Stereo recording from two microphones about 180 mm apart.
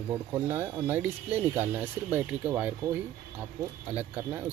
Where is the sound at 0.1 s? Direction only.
15° right (ahead or behind).